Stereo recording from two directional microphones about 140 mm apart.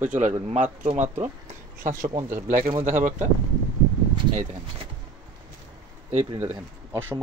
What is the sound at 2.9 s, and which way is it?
Speech, 65° right (ahead or behind).